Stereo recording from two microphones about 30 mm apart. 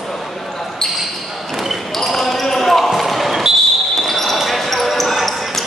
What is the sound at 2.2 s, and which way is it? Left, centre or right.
Basketball bounce, centre.